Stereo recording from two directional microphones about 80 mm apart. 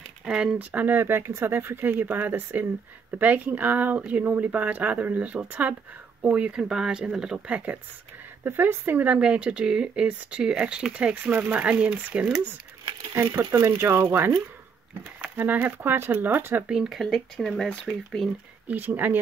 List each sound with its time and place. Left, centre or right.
0.2 s speech: centre
8.5 s speech: right
13.1 s speech: right
16.6 s speech: centre
18.7 s speech: right